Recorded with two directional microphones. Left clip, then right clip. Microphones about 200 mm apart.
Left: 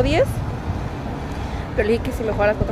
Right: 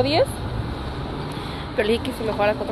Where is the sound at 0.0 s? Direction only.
20° left (ahead or behind).